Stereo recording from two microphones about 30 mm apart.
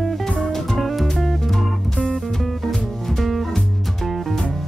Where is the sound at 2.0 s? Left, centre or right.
Left.